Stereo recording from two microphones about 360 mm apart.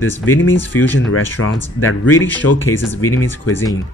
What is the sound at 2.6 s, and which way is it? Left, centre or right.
Speech, centre.